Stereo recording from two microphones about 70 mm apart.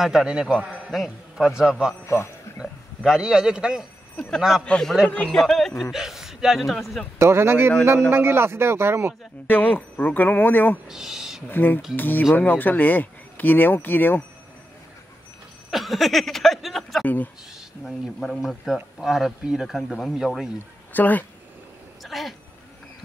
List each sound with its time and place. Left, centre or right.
0.0 s a man's voice: centre
2.0 s speech: left
3.0 s a man's voice: centre
4.6 s a man's voice: centre
7.2 s speech: right
9.5 s speech: left
10.9 s speech: centre
11.4 s speech: left
15.7 s speech: centre
17.0 s speech: left
17.6 s speech: centre
20.9 s speech: left
22.0 s speech: centre